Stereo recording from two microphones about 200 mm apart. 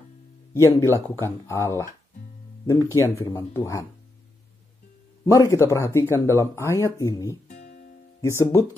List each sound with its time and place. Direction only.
0.5 s speech: 15° left (ahead or behind)
5.2 s speech: 15° left (ahead or behind)
7.4 s music: 45° left (ahead or behind)
8.2 s speech: 15° left (ahead or behind)